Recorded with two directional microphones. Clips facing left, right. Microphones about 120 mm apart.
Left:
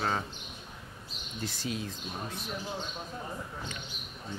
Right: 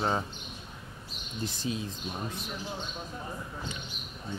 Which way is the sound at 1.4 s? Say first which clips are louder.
Right 2 dB; 20° right (ahead or behind).